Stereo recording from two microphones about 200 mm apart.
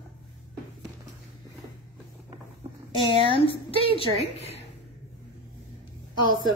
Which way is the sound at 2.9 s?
25° left (ahead or behind).